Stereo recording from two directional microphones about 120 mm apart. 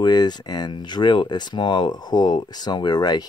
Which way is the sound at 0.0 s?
35° left (ahead or behind).